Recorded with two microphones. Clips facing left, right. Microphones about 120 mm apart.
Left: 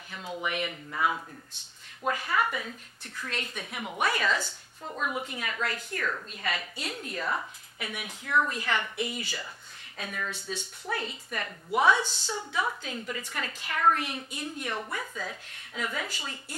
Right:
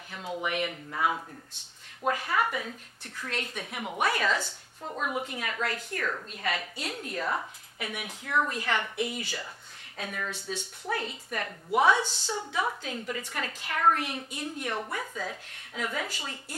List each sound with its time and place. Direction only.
0.4 s a woman's voice: 45° right (ahead or behind)
0.9 s a woman's voice: 35° right (ahead or behind)
4.4 s a woman's voice: 30° right (ahead or behind); by 9.5 s 50° right (ahead or behind)
9.9 s a woman's voice: 40° right (ahead or behind)
12.0 s a woman's voice: 30° right (ahead or behind)
12.5 s a woman's voice: 45° right (ahead or behind)
14.8 s speech: 40° right (ahead or behind)